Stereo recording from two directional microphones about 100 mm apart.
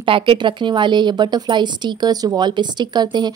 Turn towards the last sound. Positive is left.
turn(degrees=-45)  # may be behind; listen again after turning